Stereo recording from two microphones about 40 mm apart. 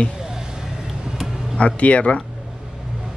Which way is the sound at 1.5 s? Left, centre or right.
Left.